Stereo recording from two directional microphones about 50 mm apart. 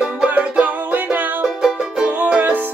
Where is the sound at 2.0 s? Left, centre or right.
Right.